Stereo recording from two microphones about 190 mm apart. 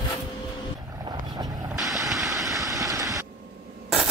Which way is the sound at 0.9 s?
20° right (ahead or behind).